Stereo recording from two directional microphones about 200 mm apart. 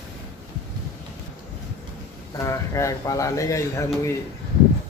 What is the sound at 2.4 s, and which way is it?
Speech, 15° left (ahead or behind).